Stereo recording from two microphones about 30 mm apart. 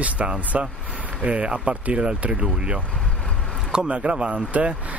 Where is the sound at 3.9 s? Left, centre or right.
Right.